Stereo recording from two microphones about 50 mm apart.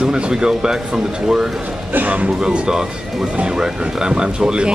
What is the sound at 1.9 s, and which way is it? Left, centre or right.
Speech, right.